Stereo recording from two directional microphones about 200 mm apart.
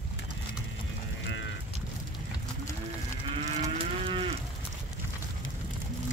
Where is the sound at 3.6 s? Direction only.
25° right (ahead or behind).